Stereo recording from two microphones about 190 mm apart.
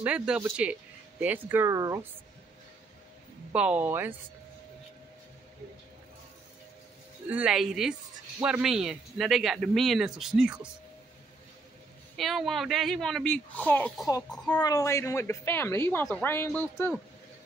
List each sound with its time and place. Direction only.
0.0 s speech: 5° right (ahead or behind)
3.5 s speech: 5° right (ahead or behind)
7.2 s speech: 5° right (ahead or behind)
12.2 s speech: centre (ahead or behind)
14.0 s a child's voice: 20° left (ahead or behind)